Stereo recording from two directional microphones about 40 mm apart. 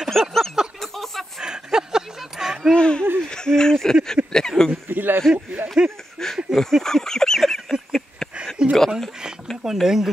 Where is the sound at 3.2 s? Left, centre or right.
Centre.